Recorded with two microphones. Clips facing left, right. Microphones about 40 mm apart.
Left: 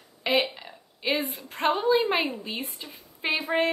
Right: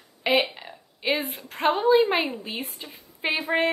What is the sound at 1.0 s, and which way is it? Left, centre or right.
Speech, centre.